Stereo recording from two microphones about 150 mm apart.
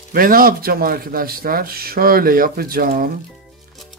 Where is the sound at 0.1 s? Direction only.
70° right (ahead or behind).